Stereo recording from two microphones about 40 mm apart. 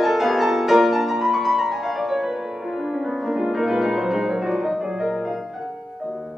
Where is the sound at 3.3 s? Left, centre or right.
Centre.